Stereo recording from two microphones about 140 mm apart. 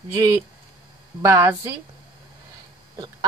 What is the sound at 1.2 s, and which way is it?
Speech, 20° right (ahead or behind).